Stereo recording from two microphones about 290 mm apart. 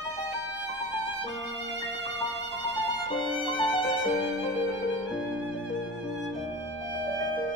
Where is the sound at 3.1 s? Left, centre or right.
Centre.